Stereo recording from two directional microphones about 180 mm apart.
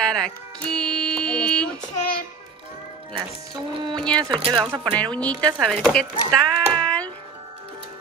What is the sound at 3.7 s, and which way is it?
Speech, 25° right (ahead or behind).